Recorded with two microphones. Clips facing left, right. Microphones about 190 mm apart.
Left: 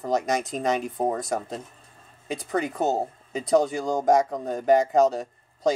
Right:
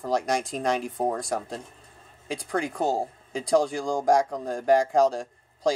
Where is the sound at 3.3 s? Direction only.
5° left (ahead or behind).